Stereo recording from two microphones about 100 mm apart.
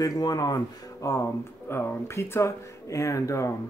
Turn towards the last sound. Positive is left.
turn(degrees=30)  # may be behind; listen again after turning